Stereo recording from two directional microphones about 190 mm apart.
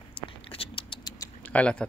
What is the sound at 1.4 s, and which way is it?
Keys jangling, 5° left (ahead or behind).